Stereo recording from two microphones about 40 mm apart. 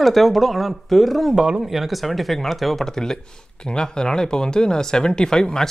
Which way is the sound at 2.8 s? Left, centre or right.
Centre.